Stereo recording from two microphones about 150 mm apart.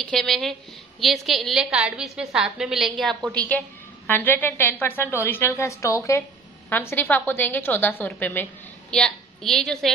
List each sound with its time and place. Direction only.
0.0 s a woman's voice: 5° left (ahead or behind)